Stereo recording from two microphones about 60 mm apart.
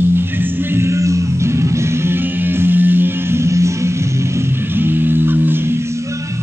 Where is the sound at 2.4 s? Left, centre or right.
Right.